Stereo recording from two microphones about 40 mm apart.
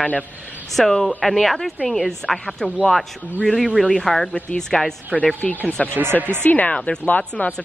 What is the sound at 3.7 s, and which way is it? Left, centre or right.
A woman's voice, centre.